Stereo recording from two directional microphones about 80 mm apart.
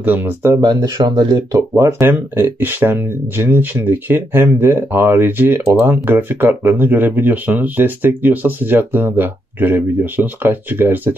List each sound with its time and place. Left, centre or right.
0.0 s speech: right
0.6 s speech: right
1.8 s speech: right